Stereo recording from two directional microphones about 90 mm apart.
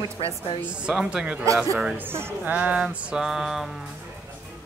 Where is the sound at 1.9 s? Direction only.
25° right (ahead or behind).